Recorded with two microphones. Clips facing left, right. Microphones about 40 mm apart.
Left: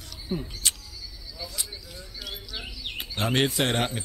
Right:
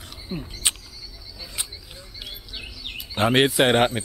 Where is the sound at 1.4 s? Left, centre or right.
Right.